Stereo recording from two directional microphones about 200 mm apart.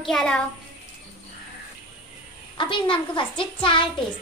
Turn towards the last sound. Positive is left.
turn(degrees=25)  # may be behind; listen again after turning